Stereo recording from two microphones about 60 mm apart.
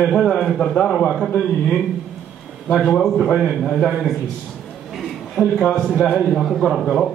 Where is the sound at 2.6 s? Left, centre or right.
Centre.